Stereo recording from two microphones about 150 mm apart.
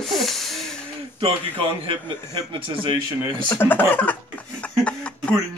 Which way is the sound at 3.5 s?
15° left (ahead or behind).